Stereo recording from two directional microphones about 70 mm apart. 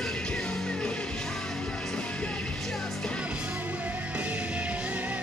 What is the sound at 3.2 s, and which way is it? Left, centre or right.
Music, centre.